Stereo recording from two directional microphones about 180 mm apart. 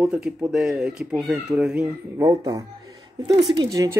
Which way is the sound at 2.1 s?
20° right (ahead or behind).